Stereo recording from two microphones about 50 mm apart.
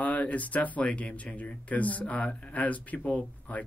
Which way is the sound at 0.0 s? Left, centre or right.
Left.